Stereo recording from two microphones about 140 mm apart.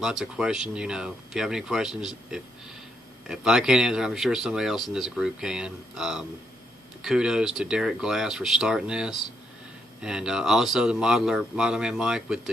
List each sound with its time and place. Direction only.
0.0 s speech: 5° right (ahead or behind)